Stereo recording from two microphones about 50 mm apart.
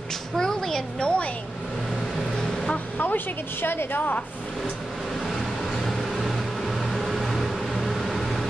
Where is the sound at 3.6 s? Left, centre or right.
Left.